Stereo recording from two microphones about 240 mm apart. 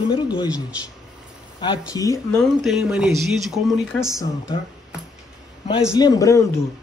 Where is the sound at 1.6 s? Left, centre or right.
Centre.